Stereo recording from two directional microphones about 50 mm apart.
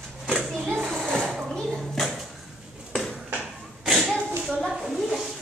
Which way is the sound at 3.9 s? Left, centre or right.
Centre.